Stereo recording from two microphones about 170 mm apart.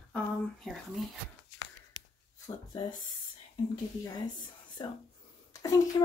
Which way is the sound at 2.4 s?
25° left (ahead or behind).